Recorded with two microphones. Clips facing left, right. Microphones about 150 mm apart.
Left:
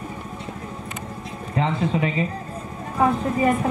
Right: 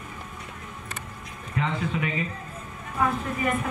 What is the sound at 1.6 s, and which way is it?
Speech, 30° left (ahead or behind).